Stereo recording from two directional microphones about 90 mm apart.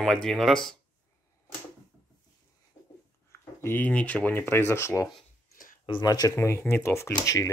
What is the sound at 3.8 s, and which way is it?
Speech, 15° left (ahead or behind).